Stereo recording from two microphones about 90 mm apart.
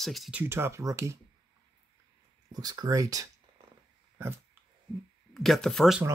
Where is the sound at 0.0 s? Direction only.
Centre (ahead or behind).